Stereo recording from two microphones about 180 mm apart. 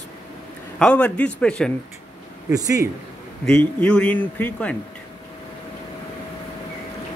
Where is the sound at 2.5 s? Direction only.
20° right (ahead or behind).